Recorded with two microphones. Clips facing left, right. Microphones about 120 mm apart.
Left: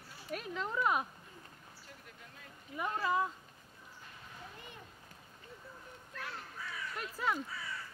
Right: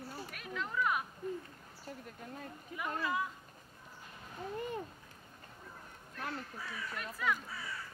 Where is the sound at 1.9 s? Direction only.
40° right (ahead or behind).